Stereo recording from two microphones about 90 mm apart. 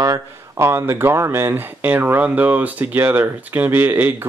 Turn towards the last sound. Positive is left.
turn(degrees=-25)  # may be behind; listen again after turning